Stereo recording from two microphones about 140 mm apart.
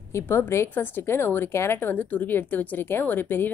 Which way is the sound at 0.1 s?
15° left (ahead or behind).